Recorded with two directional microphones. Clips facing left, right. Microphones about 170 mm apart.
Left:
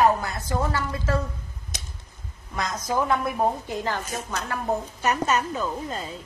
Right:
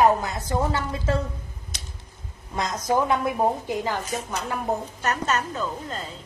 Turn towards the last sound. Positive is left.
turn(degrees=10)  # may be behind; listen again after turning